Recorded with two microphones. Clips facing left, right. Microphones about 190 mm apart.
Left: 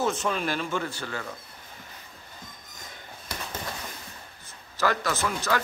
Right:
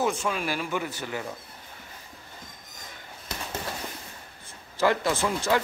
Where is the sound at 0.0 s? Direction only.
10° right (ahead or behind).